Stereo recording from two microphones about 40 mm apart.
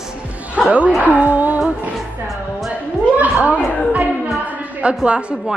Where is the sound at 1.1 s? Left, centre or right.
Right.